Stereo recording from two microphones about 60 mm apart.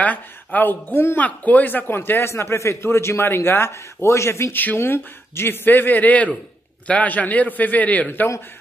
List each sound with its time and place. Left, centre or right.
0.0 s a man's voice: left
2.3 s a man's voice: left